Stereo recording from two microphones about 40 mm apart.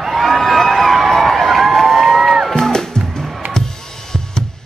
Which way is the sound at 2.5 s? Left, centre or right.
Centre.